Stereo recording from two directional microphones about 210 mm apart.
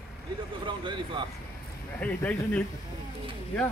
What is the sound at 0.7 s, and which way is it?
Speech, 25° right (ahead or behind).